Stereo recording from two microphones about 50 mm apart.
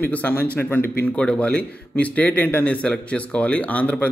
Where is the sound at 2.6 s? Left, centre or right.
Left.